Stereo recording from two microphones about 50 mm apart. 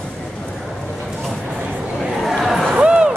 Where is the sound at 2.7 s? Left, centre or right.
Centre.